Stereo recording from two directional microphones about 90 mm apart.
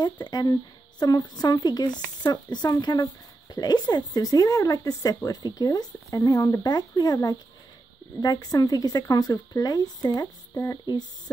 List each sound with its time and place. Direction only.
0.0 s speech: 50° left (ahead or behind)
10.5 s speech: 25° left (ahead or behind)